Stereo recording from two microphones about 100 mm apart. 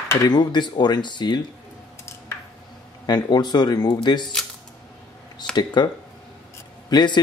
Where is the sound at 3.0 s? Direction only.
45° left (ahead or behind).